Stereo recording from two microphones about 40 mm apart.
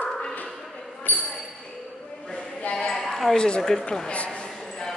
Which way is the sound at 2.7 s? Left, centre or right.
Left.